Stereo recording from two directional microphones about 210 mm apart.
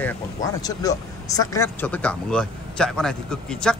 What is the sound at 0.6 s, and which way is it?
Speech, 15° left (ahead or behind).